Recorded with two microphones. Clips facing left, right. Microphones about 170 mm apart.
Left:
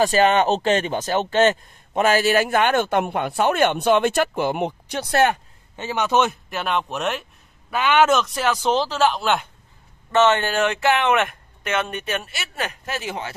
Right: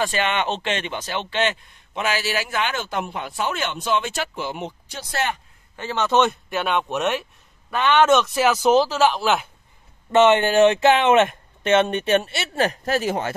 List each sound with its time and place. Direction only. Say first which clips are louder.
0.0 s speech: left 6 dB; 40° left (ahead or behind); by 5.4 s 60° left (ahead or behind)
5.8 s speech: right 1 dB; 15° left (ahead or behind); by 9.5 s centre (ahead or behind)
10.1 s speech: right 3 dB; 20° right (ahead or behind); by 13.3 s 45° right (ahead or behind)